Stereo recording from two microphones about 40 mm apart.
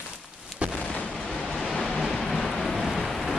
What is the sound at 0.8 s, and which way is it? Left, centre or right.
Artillery fire, left.